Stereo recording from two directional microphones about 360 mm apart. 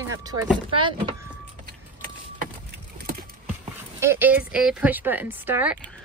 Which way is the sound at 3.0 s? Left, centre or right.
Right.